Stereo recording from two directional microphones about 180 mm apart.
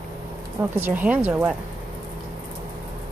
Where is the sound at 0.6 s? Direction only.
10° right (ahead or behind).